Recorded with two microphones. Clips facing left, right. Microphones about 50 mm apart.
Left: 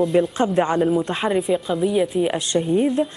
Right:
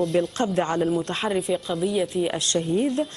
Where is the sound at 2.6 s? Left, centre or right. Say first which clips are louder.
Left 5 dB; centre.